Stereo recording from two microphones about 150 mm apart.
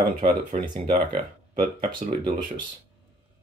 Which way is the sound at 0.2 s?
70° right (ahead or behind).